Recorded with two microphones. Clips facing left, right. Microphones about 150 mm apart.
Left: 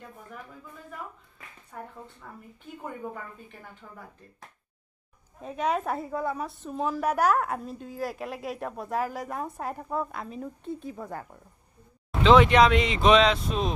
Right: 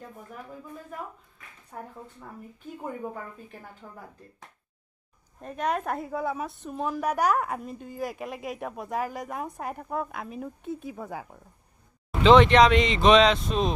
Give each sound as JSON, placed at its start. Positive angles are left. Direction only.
{"t": 1.7, "sound": "speech", "side_deg": -30}
{"t": 3.8, "sound": "speech", "side_deg": -15}
{"t": 5.4, "sound": "a woman's voice", "side_deg": 5}